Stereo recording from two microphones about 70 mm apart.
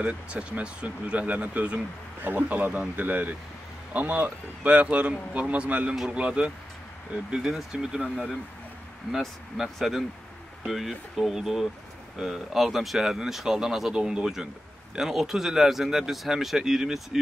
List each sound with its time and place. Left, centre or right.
0.0 s speech: centre
9.1 s speech: centre